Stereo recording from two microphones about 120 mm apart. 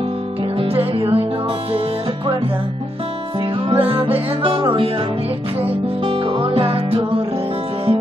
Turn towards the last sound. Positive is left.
turn(degrees=-50)  # may be behind; listen again after turning